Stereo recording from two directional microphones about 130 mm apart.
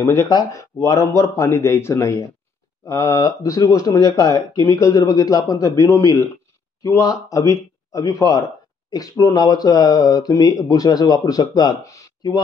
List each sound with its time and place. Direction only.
0.0 s speech: 20° left (ahead or behind)